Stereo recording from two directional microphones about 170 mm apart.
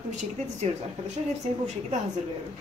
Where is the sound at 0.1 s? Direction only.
45° right (ahead or behind).